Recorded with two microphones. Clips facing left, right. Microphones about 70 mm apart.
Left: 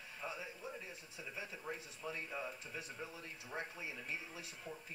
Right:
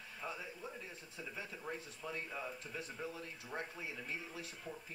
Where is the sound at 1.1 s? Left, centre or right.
Centre.